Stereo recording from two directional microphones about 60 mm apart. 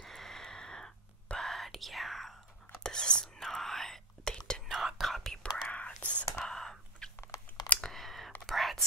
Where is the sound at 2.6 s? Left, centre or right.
Centre.